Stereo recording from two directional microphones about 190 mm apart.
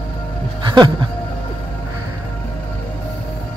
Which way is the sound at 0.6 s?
25° right (ahead or behind).